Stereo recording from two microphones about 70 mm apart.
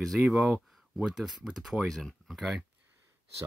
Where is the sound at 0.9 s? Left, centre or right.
Centre.